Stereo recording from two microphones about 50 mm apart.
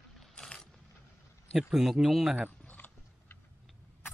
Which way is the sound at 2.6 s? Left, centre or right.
Left.